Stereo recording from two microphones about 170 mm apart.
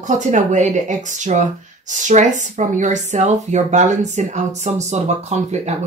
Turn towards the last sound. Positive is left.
turn(degrees=-40)  # may be behind; listen again after turning